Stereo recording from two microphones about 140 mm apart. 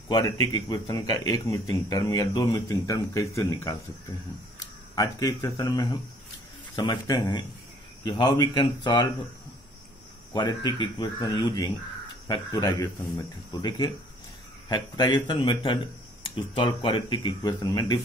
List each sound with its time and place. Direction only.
0.1 s speech: 25° left (ahead or behind)
10.3 s speech: 35° left (ahead or behind)